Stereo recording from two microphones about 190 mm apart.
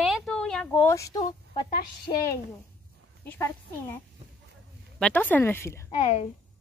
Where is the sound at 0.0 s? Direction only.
Centre (ahead or behind).